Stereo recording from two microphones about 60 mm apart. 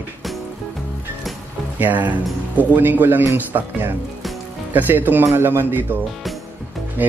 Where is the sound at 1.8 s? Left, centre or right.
Right.